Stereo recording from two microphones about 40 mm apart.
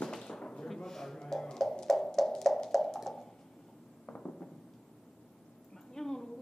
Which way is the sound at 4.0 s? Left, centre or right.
Left.